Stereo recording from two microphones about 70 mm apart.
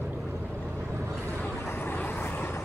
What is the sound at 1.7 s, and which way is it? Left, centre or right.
Vehicle, left.